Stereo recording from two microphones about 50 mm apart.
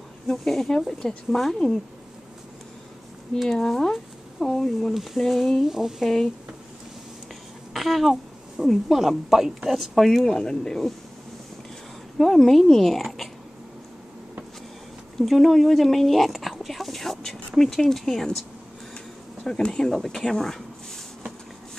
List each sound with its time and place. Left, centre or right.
0.3 s speech: centre
3.4 s speech: centre
4.9 s speech: centre
6.0 s speech: centre
7.7 s speech: centre
12.2 s speech: centre
15.1 s a sound: centre
17.6 s speech: centre
19.4 s speech: centre
20.2 s a sound: centre